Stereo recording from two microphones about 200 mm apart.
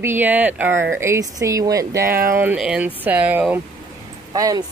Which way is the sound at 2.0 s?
45° right (ahead or behind).